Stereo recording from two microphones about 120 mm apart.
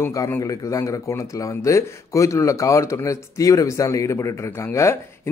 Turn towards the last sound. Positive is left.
turn(degrees=25)  # may be behind; listen again after turning